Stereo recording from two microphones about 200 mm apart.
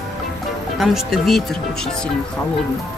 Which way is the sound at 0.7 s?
Centre (ahead or behind).